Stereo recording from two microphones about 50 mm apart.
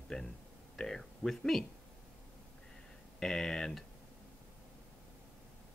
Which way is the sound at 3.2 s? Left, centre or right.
Centre.